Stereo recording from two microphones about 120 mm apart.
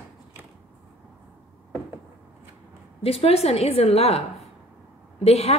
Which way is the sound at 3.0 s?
55° left (ahead or behind).